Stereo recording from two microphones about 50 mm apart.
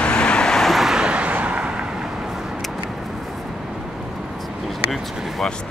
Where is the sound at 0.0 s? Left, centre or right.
Centre.